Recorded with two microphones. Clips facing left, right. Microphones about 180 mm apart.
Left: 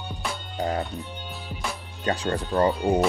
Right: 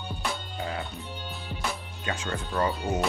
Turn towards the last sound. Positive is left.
turn(degrees=35)  # may be behind; listen again after turning